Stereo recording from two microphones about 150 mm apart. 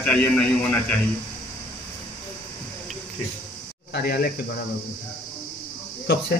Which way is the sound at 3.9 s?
90° left.